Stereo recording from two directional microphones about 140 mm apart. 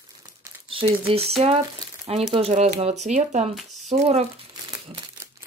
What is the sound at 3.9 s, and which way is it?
Speech, 45° right (ahead or behind).